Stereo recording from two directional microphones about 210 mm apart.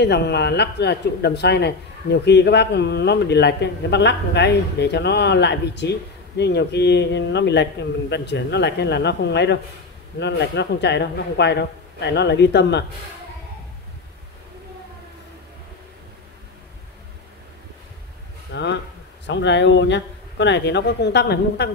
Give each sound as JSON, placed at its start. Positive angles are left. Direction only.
{"t": 0.0, "sound": "a man's voice", "side_deg": 50}
{"t": 18.5, "sound": "a man's voice", "side_deg": 55}